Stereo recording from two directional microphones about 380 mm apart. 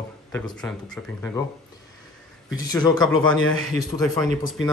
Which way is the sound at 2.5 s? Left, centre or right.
Centre.